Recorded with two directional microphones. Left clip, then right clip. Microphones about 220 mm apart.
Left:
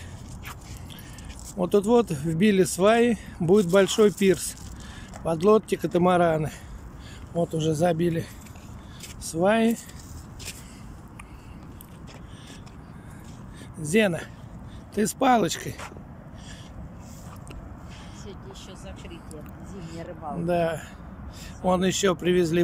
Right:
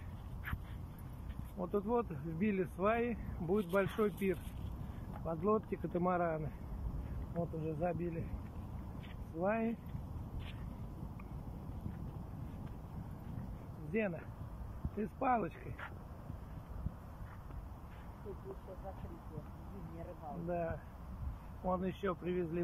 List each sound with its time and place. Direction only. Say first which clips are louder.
1.6 s speech: left 15 dB; 25° left (ahead or behind)
7.6 s speech: left 16 dB; 20° left (ahead or behind)
9.4 s speech: left 15 dB; 20° left (ahead or behind)
13.9 s speech: left 16 dB; 20° left (ahead or behind)
20.4 s speech: left 15 dB; 20° left (ahead or behind)